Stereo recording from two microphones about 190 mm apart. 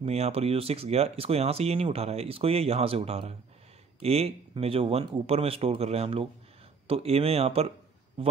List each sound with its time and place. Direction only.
0.0 s a man's voice: 35° right (ahead or behind)